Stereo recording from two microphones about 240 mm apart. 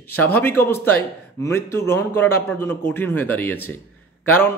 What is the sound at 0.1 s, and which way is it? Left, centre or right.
A man's voice, centre.